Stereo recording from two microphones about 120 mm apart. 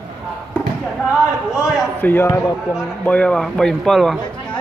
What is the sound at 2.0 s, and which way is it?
Speech, 15° left (ahead or behind).